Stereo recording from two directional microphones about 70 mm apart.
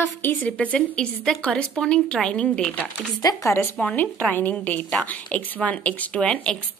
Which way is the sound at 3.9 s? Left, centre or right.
Left.